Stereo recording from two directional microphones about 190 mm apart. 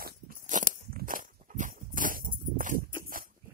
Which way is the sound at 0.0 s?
45° right (ahead or behind).